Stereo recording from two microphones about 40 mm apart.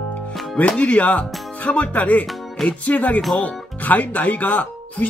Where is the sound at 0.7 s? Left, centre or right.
Left.